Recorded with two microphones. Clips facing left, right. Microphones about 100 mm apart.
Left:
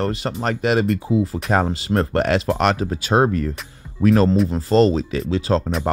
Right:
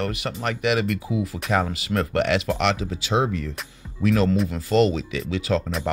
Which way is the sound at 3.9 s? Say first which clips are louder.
Left 5 dB; 35° left (ahead or behind).